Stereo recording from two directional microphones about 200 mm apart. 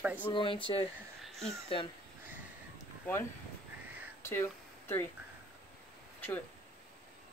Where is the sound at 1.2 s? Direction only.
Centre (ahead or behind).